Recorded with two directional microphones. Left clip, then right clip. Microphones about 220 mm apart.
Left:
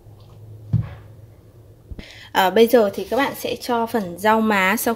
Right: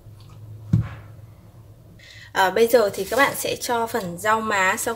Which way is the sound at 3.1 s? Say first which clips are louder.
Right 1 dB; 20° left (ahead or behind).